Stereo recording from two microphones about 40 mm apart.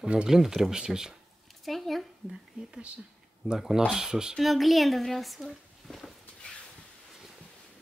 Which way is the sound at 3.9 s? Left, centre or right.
Centre.